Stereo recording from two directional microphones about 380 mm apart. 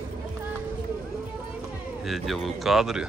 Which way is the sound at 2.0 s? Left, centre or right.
Centre.